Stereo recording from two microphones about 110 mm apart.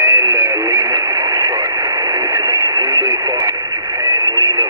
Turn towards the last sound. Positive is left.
turn(degrees=-30)  # may be behind; listen again after turning